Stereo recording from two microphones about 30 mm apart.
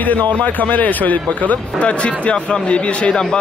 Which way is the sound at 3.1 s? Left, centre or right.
Left.